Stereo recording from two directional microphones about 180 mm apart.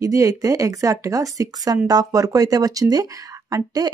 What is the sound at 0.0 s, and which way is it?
A woman's voice, 20° right (ahead or behind).